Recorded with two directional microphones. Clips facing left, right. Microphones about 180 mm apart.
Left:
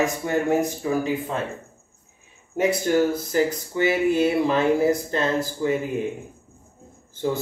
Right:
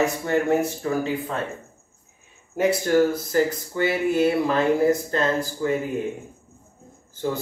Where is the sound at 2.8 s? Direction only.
15° left (ahead or behind).